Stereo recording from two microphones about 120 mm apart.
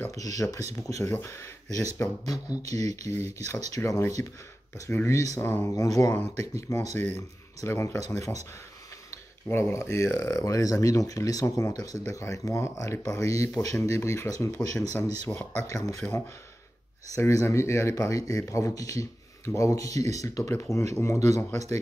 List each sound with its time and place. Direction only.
0.1 s speech: 30° left (ahead or behind)
2.7 s speech: 15° left (ahead or behind)
3.2 s speech: 25° left (ahead or behind)
17.1 s speech: 25° left (ahead or behind)